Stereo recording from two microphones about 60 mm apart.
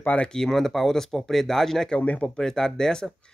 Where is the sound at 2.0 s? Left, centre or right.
Left.